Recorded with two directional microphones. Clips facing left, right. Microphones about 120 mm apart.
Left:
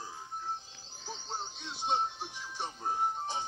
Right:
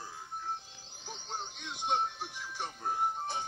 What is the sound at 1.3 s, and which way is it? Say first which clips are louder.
Music: right 1 dB; 15° right (ahead or behind).